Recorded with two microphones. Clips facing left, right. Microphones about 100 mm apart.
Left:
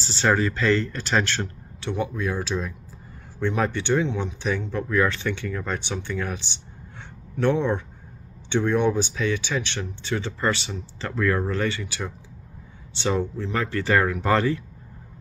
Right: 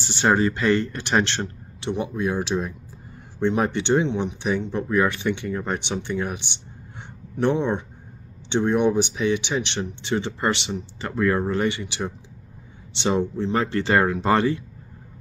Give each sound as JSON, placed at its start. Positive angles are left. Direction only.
{"t": 0.0, "sound": "speech", "side_deg": -20}